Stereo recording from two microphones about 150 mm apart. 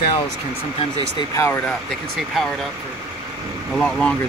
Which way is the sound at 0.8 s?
35° left (ahead or behind).